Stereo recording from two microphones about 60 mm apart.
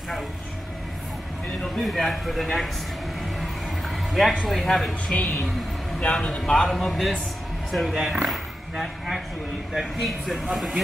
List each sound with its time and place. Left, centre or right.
1.8 s speech: centre
3.9 s a sound: centre
4.5 s speech: centre
5.0 s speech: centre